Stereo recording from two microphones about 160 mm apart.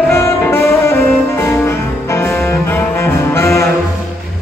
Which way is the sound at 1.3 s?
15° left (ahead or behind).